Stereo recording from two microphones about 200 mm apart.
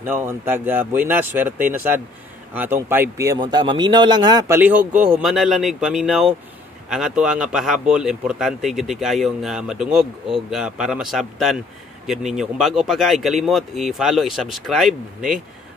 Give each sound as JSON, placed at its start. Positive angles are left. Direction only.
{"t": 0.0, "sound": "a man's voice", "side_deg": -10}